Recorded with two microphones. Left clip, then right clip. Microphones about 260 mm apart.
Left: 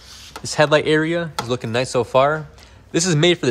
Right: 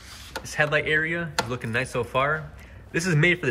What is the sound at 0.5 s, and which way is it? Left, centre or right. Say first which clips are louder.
Speech: left 7 dB; left.